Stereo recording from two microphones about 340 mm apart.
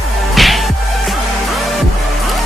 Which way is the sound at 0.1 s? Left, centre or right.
Centre.